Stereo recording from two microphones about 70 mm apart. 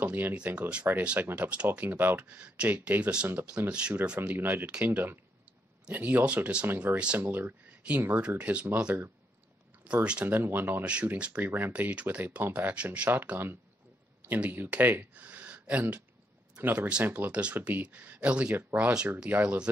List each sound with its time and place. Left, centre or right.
0.0 s speech: right
1.7 s speech: right
4.4 s speech: right
6.7 s speech: right
10.2 s speech: right
11.1 s speech: centre
11.4 s speech: right
13.1 s speech: right